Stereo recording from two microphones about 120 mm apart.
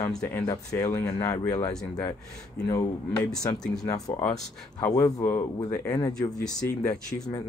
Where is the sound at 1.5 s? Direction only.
35° left (ahead or behind).